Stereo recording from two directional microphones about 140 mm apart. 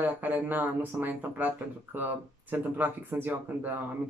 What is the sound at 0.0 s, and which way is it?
Speech, 10° right (ahead or behind).